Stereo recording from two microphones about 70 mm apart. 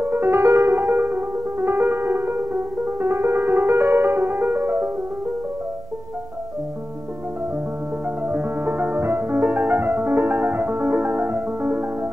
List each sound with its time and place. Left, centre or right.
0.0 s music: right
8.3 s music: right